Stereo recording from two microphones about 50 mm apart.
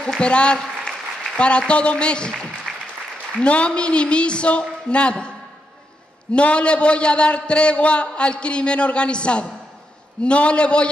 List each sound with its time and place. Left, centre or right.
0.2 s a man's voice: left
0.6 s applause: centre
1.4 s a man's voice: left
2.7 s applause: centre
3.4 s a man's voice: left
6.3 s a man's voice: left